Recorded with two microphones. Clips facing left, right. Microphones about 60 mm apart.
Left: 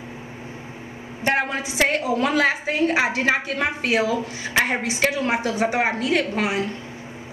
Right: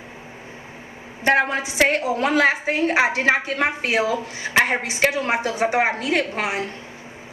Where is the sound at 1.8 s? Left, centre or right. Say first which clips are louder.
Right 2 dB; right.